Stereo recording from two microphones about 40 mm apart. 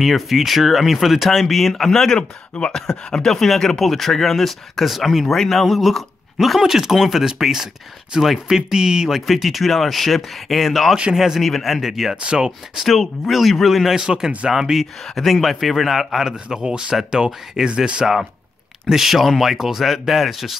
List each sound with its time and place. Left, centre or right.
0.0 s speech: centre
2.1 s speech: left
3.3 s speech: centre
9.2 s speech: centre
11.4 s speech: centre
12.8 s speech: centre
13.9 s speech: centre
16.3 s speech: centre
18.9 s speech: centre